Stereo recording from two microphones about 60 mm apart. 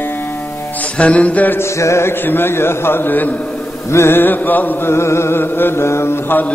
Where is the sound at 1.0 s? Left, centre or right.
Left.